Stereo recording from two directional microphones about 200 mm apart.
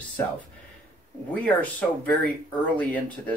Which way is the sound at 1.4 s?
5° left (ahead or behind).